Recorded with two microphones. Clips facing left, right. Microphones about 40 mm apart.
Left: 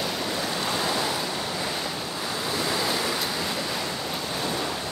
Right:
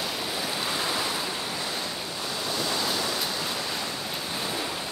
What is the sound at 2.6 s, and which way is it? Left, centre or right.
Waves, centre.